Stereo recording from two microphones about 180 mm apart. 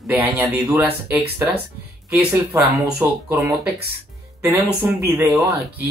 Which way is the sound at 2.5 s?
15° right (ahead or behind).